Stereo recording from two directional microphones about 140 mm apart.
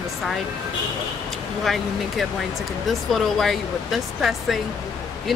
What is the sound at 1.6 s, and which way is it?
Speech, centre (ahead or behind).